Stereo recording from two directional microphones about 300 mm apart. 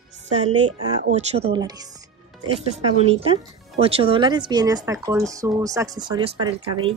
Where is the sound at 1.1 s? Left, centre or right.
Right.